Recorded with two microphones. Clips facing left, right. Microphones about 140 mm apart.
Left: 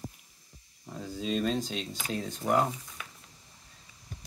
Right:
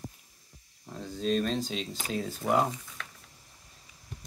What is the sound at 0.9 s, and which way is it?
Speech, 5° left (ahead or behind).